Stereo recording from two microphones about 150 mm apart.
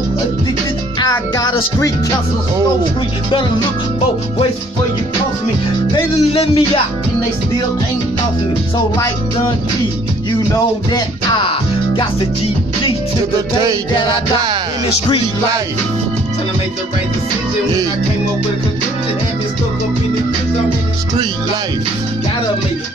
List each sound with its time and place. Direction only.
0.9 s music: 25° left (ahead or behind)
6.3 s music: 40° left (ahead or behind)
10.9 s music: 30° left (ahead or behind)